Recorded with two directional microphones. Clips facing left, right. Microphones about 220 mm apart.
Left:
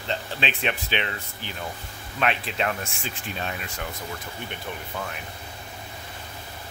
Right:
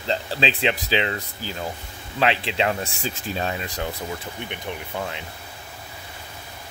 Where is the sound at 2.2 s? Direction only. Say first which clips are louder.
Right 4 dB; 30° right (ahead or behind).